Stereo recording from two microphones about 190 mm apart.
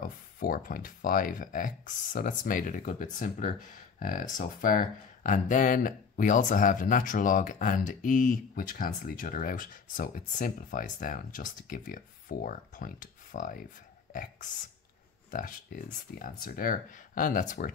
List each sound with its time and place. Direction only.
0.4 s speech: 50° left (ahead or behind)